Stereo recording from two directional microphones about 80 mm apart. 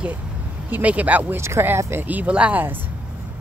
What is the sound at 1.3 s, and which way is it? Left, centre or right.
Speech, right.